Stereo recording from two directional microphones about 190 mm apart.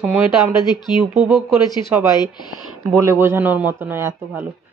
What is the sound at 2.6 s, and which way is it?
Speech, 10° right (ahead or behind).